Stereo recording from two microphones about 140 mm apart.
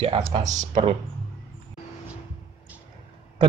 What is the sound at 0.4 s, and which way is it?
Speech, 60° right (ahead or behind).